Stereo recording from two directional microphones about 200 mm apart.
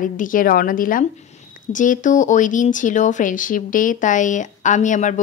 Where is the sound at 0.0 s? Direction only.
40° left (ahead or behind).